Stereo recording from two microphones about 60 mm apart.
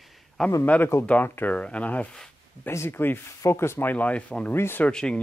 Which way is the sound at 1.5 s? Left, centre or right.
Left.